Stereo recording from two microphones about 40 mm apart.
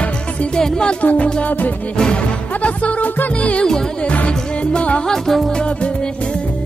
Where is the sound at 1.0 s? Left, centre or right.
Left.